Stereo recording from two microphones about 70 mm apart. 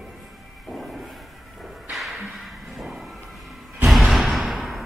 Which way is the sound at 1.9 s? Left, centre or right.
Centre.